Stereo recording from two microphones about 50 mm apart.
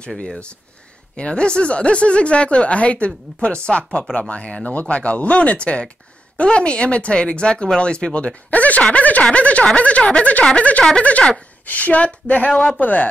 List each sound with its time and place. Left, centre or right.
1.1 s speech: left